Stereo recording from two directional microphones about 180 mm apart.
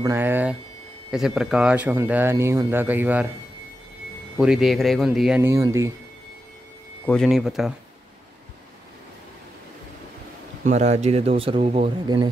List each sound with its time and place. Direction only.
0.0 s speech: 10° right (ahead or behind)
4.4 s speech: 5° right (ahead or behind)
5.4 s speech: 15° right (ahead or behind)
7.1 s speech: centre (ahead or behind)
10.6 s speech: 40° right (ahead or behind)